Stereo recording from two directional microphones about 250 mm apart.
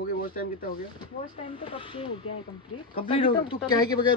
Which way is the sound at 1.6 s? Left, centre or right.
Left.